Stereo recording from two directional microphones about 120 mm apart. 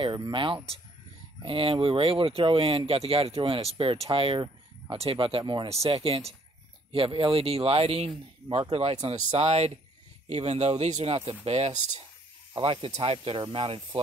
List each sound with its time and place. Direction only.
0.0 s speech: 40° right (ahead or behind)
5.4 s speech: 40° right (ahead or behind)
5.7 s speech: 55° right (ahead or behind)
12.5 s speech: 45° right (ahead or behind)